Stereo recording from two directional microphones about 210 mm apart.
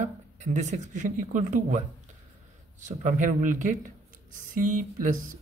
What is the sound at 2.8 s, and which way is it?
Speech, 35° right (ahead or behind).